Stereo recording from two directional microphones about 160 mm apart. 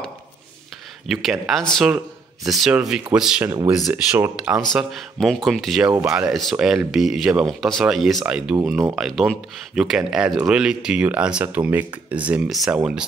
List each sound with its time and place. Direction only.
1.0 s speech: centre (ahead or behind)
3.4 s speech: 20° right (ahead or behind)
3.7 s speech: 5° right (ahead or behind)